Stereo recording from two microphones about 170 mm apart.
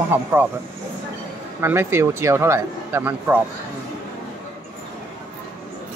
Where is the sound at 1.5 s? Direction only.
15° right (ahead or behind).